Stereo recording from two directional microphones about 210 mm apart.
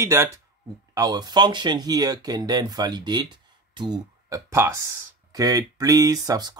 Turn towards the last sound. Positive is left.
turn(degrees=-20)  # may be behind; listen again after turning